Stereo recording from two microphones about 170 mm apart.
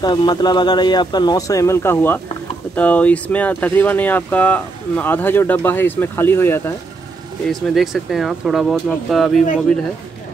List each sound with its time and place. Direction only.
0.0 s speech: 25° left (ahead or behind)
7.4 s speech: centre (ahead or behind)